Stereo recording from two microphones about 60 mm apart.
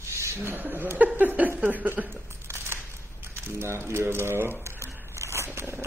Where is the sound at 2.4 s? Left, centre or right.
Right.